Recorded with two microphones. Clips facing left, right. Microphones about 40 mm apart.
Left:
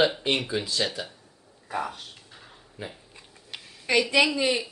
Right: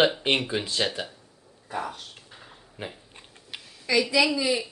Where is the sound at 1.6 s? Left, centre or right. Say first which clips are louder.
Left 1 dB; centre.